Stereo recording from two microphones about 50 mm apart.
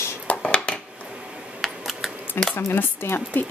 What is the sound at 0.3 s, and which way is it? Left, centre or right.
Dishes, left.